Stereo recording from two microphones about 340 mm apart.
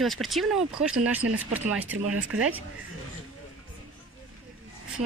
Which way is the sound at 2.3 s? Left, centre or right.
Right.